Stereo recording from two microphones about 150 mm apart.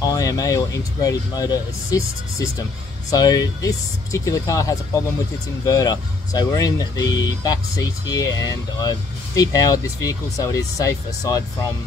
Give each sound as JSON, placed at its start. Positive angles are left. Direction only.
{"t": 0.0, "sound": "speech", "side_deg": 25}